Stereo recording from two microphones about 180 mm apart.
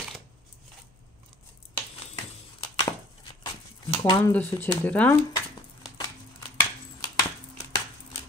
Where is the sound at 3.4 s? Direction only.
25° left (ahead or behind).